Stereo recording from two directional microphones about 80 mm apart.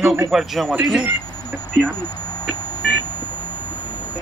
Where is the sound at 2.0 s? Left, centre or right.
Left.